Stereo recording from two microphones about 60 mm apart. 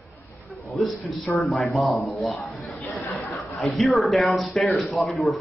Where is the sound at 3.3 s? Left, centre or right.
Centre.